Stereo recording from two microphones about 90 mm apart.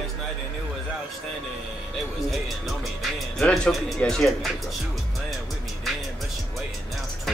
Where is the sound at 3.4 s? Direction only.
10° left (ahead or behind).